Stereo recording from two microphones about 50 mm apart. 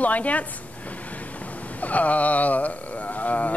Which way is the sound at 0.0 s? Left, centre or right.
Left.